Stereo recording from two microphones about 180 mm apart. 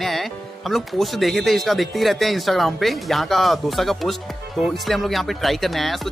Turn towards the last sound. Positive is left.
turn(degrees=0)  # may be behind; listen again after turning